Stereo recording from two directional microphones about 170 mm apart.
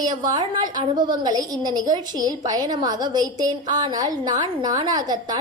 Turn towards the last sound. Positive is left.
turn(degrees=-25)  # may be behind; listen again after turning